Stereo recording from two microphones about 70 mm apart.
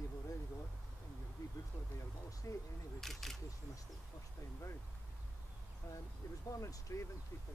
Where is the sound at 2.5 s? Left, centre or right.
Left.